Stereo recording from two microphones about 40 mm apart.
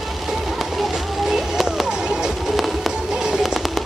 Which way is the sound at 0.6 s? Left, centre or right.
Centre.